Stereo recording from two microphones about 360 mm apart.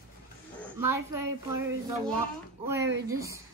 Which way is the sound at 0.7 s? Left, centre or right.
Centre.